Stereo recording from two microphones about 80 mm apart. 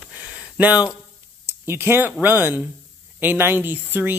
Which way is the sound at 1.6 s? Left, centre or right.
Right.